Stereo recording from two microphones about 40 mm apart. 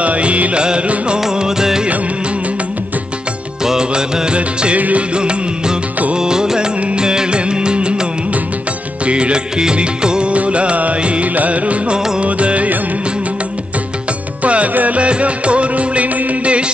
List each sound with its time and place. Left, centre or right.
0.0 s music: right
1.2 s music: centre
3.6 s music: centre
4.7 s music: right
5.1 s music: right
6.8 s music: right
7.1 s music: right
14.4 s music: right